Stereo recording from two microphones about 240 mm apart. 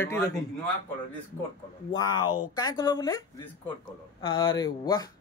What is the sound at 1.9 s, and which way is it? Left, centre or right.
Speech, centre.